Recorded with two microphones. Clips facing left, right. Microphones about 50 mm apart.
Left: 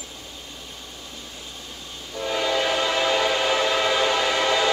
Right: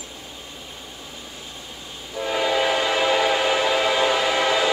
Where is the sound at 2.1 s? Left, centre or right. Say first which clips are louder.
Right 2 dB; centre.